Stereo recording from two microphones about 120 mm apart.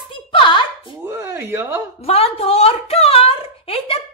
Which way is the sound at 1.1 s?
20° right (ahead or behind).